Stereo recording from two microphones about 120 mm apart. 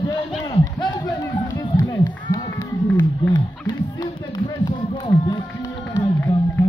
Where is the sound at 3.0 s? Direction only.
35° left (ahead or behind).